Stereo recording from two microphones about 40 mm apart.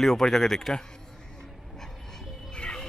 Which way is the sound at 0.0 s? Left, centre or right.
Centre.